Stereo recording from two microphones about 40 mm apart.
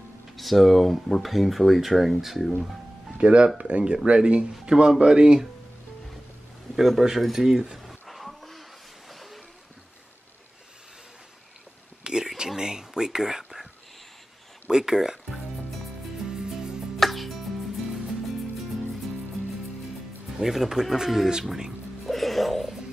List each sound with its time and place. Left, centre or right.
0.4 s speech: centre
3.2 s speech: right
7.0 s speech: centre
7.8 s a sound: centre
12.0 s a sound: centre
14.7 s speech: centre
16.3 s music: centre
17.0 s music: centre
20.4 s speech: centre
22.0 s music: centre